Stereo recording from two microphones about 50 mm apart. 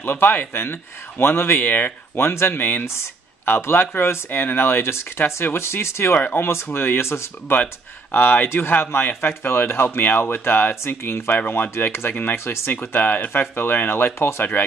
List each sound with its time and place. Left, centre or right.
0.0 s speech: left
2.1 s speech: left
4.3 s speech: left
5.6 s speech: left
7.5 s speech: left
11.3 s speech: left